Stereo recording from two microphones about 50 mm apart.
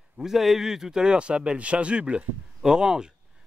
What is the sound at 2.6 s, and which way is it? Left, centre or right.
Speech, centre.